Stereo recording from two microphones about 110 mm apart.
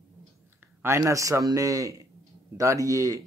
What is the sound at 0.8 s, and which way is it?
Speech, 25° right (ahead or behind).